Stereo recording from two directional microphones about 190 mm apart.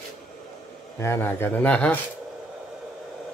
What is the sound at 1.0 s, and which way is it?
Speech, 15° left (ahead or behind).